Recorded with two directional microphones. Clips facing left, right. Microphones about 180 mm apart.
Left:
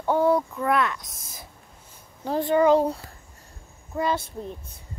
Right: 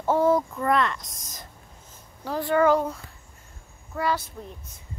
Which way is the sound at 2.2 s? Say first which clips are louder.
Left 1 dB; 20° left (ahead or behind).